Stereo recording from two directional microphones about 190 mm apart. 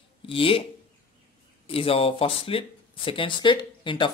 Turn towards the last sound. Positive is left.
turn(degrees=25)  # may be behind; listen again after turning